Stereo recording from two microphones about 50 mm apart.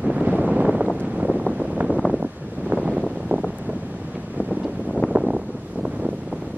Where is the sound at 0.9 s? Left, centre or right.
Right.